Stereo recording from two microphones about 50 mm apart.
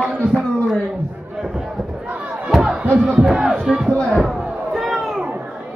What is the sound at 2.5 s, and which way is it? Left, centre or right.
Crowd, centre.